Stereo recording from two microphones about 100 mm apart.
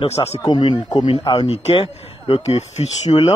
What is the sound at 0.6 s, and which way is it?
Speech, 55° left (ahead or behind).